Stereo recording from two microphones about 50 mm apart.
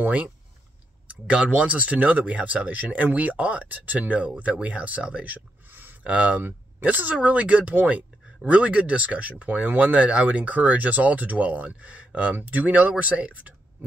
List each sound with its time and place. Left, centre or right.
1.0 s speech: right
6.0 s speech: right
6.4 s speech: right